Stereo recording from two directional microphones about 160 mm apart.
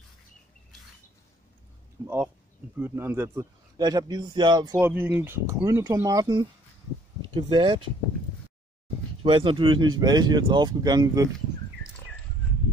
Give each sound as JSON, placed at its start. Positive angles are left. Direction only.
{"t": 2.0, "sound": "speech", "side_deg": -15}
{"t": 4.7, "sound": "speech", "side_deg": -15}
{"t": 9.2, "sound": "speech", "side_deg": -30}